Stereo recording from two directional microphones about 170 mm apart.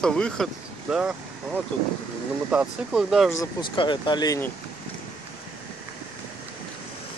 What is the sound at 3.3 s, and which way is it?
Speech, 30° left (ahead or behind).